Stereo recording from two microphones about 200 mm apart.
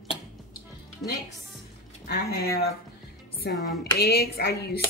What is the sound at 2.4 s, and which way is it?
Speech, 50° left (ahead or behind).